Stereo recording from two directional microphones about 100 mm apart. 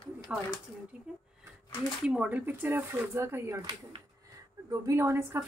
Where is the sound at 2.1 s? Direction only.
15° right (ahead or behind).